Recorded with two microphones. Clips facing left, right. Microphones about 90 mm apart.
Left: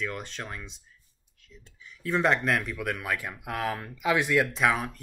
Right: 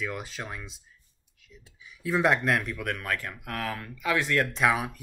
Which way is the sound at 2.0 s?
5° right (ahead or behind).